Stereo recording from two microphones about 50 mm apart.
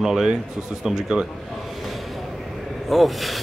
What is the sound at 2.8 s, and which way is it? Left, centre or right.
Speech, centre.